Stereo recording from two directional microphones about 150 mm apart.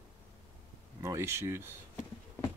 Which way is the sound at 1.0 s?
15° right (ahead or behind).